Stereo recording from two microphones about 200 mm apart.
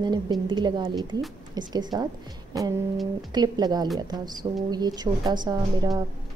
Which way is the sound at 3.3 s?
20° right (ahead or behind).